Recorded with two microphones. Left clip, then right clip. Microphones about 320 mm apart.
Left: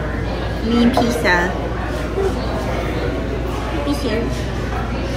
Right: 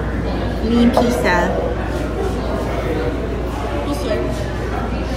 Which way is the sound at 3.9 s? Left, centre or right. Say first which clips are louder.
Even; left.